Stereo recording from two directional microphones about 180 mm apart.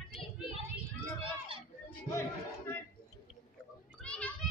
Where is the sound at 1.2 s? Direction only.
30° right (ahead or behind).